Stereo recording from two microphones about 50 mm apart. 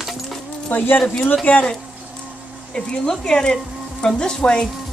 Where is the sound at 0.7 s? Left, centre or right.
Left.